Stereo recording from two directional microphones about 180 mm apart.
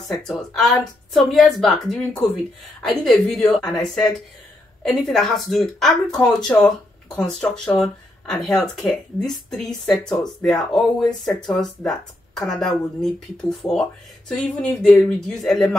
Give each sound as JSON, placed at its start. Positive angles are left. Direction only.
{"t": 0.1, "sound": "speech", "side_deg": 0}